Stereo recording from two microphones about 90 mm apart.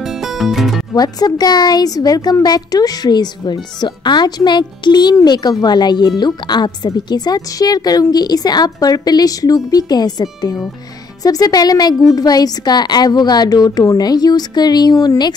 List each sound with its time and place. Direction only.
0.0 s music: 5° right (ahead or behind)
0.9 s speech: 50° left (ahead or behind)